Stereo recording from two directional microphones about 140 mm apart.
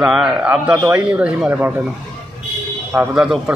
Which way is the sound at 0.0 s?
5° right (ahead or behind).